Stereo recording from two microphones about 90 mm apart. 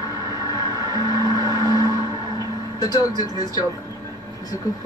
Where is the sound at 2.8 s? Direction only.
45° left (ahead or behind).